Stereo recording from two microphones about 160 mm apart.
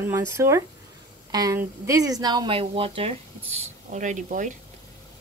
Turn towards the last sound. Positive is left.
turn(degrees=-50)  # may be behind; listen again after turning